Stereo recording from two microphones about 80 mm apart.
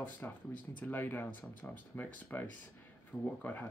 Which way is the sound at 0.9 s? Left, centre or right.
Left.